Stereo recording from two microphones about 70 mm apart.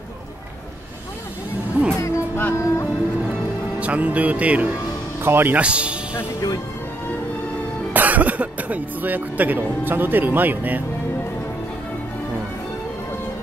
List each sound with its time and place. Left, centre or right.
1.8 s music: right
2.3 s music: left
3.8 s speech: centre
5.2 s speech: right
5.6 s a man's voice: centre
7.9 s speech: right